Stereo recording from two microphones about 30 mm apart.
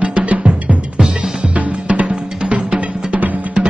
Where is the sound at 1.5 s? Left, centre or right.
Right.